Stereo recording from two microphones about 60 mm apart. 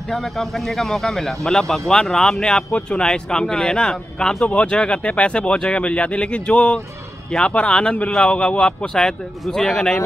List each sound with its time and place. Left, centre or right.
0.1 s speech: centre